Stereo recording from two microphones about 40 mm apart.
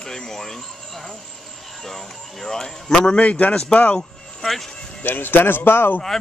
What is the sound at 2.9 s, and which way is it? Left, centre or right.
Speech, left.